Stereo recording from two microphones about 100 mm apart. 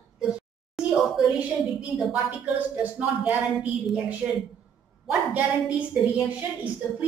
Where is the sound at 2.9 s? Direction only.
15° right (ahead or behind).